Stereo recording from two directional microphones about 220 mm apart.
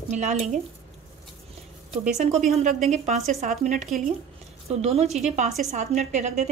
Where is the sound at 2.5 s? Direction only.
30° right (ahead or behind).